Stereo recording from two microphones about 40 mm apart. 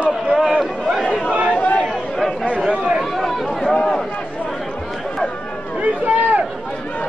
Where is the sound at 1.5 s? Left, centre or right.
Left.